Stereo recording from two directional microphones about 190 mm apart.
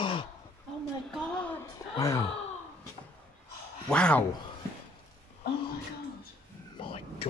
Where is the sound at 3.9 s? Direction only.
5° left (ahead or behind).